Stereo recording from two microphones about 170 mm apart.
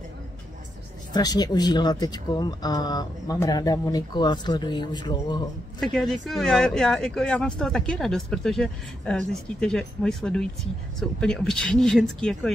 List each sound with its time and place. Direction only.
1.1 s speech: 25° left (ahead or behind)
5.8 s speech: centre (ahead or behind)